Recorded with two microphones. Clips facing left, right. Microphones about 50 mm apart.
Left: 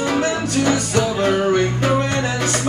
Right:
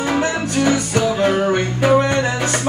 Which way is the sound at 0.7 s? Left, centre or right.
Centre.